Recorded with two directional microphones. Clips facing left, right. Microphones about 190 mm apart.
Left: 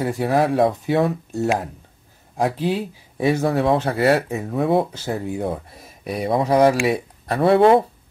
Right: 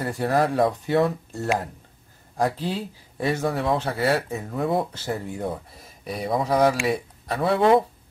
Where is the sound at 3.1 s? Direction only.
5° left (ahead or behind).